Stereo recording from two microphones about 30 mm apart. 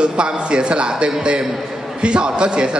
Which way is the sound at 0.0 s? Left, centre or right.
Right.